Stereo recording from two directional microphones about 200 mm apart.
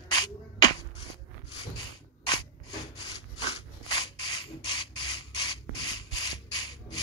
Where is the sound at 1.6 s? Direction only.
20° left (ahead or behind).